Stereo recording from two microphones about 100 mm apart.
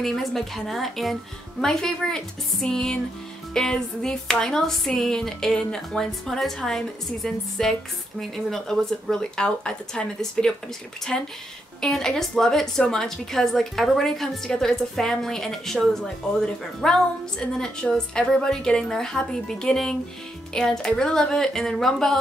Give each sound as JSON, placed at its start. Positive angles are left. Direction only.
{"t": 0.0, "sound": "a woman's voice", "side_deg": 0}